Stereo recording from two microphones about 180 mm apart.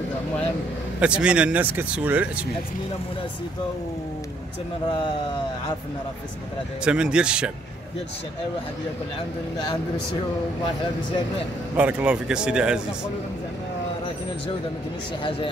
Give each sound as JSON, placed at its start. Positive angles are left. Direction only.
{"t": 0.9, "sound": "speech", "side_deg": -5}
{"t": 4.8, "sound": "speech", "side_deg": 25}
{"t": 6.8, "sound": "speech", "side_deg": -5}
{"t": 11.7, "sound": "speech", "side_deg": -5}